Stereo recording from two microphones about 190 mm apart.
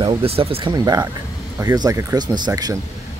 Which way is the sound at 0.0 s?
30° right (ahead or behind).